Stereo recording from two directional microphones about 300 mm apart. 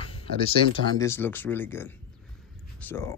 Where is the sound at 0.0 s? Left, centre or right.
Centre.